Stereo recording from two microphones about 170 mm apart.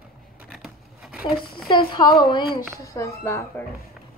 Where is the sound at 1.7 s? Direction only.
30° left (ahead or behind).